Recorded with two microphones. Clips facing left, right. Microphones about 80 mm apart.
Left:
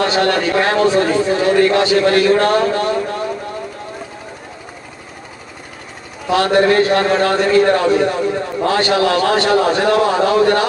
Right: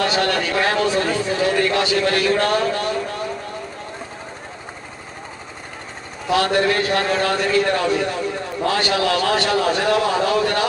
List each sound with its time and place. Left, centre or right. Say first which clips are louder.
0.0 s a man's voice: left 5 dB; left
6.3 s a man's voice: left 5 dB; left